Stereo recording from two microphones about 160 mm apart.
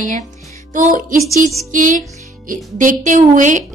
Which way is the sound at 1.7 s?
55° right (ahead or behind).